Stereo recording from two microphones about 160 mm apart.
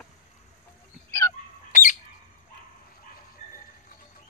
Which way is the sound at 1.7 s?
55° left (ahead or behind).